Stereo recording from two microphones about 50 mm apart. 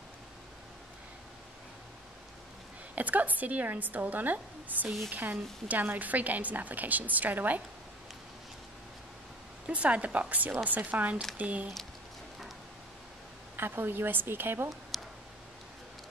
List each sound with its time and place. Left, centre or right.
3.0 s a woman's voice: right
9.7 s a woman's voice: right
13.6 s a woman's voice: right
14.9 s clicking: centre